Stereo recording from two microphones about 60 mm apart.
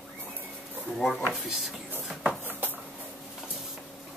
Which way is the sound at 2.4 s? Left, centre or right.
Right.